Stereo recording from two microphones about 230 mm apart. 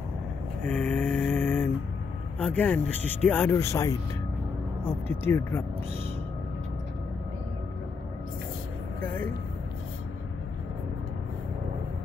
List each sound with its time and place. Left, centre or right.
0.7 s a sound: centre
2.3 s speech: centre
9.0 s speech: centre